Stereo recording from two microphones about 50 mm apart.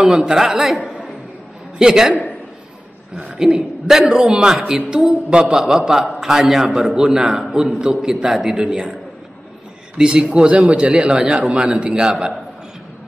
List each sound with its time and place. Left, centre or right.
0.2 s a man's voice: centre
1.8 s a man's voice: centre
3.3 s a man's voice: centre
9.9 s a man's voice: centre